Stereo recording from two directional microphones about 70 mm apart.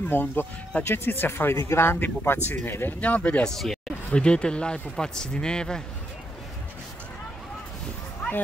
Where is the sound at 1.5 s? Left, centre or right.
Left.